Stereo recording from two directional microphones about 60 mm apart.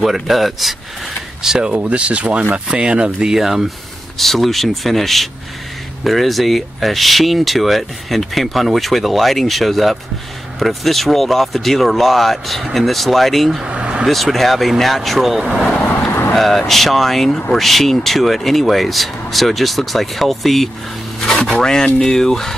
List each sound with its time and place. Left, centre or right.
0.0 s speech: centre
1.7 s speech: centre
13.7 s vehicle: centre
14.0 s speech: centre
16.1 s vehicle: left
16.3 s speech: centre